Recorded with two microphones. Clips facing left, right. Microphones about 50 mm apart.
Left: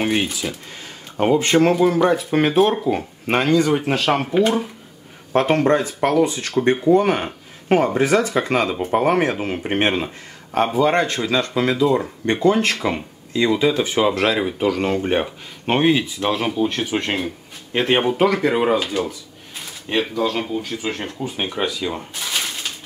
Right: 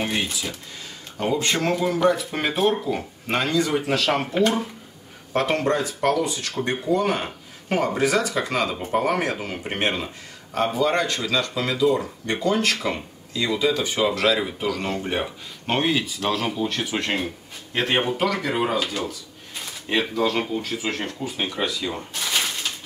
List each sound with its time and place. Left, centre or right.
0.0 s speech: left
2.6 s speech: centre
2.9 s speech: left
4.3 s speech: centre
5.3 s speech: left
18.5 s speech: centre
19.9 s speech: centre
21.4 s speech: centre
22.1 s a sound: centre